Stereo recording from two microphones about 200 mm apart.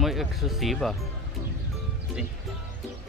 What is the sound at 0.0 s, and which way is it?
Speech, centre (ahead or behind).